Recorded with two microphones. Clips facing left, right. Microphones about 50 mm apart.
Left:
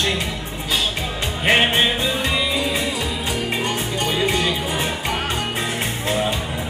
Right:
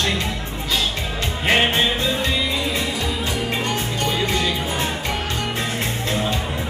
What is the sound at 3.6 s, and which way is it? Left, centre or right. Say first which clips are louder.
Music: even; centre.